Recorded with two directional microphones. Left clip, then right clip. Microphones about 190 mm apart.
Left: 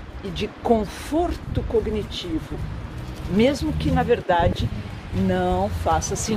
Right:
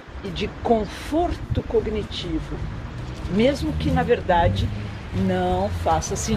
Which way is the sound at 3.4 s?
25° left (ahead or behind).